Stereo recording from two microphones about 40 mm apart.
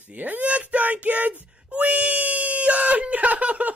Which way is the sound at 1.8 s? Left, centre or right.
Right.